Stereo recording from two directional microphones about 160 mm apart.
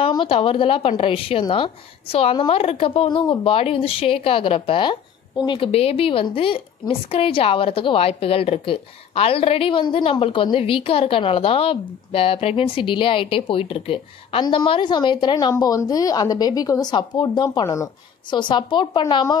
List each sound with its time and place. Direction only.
0.1 s a woman's voice: 30° left (ahead or behind)